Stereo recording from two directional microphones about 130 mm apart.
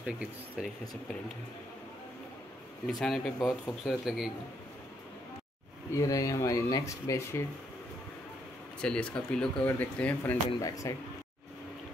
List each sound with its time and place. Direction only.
0.0 s speech: 5° right (ahead or behind)
2.9 s speech: 5° left (ahead or behind)
5.9 s speech: 25° left (ahead or behind)
8.8 s speech: 10° left (ahead or behind)
10.6 s speech: 25° left (ahead or behind)